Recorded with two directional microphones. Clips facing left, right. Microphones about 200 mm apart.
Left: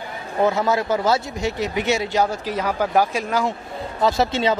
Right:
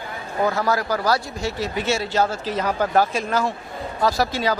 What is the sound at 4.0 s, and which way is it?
Speech, 25° left (ahead or behind).